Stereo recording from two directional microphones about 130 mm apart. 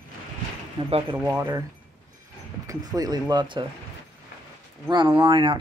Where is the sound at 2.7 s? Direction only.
30° right (ahead or behind).